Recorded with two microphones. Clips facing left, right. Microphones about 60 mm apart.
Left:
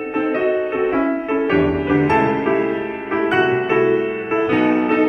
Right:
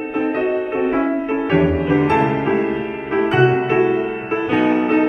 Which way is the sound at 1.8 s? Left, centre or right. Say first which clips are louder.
Even; left.